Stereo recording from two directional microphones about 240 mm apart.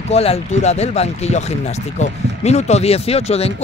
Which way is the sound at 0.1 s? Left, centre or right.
Left.